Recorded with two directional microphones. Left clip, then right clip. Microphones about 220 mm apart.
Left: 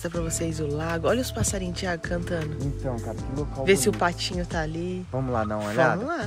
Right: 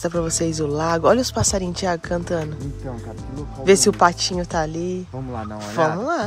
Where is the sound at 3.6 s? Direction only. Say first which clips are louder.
Right 7 dB; 30° right (ahead or behind).